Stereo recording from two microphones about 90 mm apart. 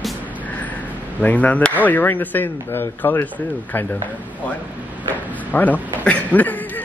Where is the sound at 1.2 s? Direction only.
15° left (ahead or behind).